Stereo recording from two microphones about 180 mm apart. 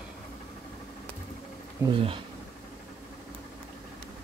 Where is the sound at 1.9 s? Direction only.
30° right (ahead or behind).